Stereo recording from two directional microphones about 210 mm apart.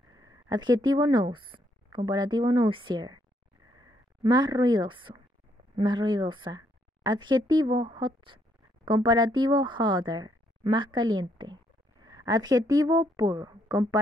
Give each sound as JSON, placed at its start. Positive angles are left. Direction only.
{"t": 0.1, "sound": "a woman's voice", "side_deg": -15}